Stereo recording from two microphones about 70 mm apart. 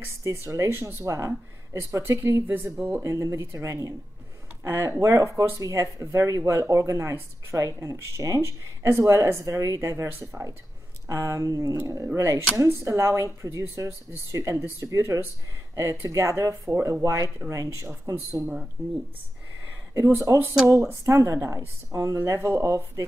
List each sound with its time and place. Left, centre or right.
0.2 s speech: right
11.1 s speech: right
18.4 s speech: right
20.0 s speech: right